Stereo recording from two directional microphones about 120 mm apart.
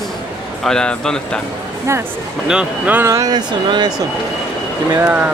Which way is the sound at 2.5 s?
10° right (ahead or behind).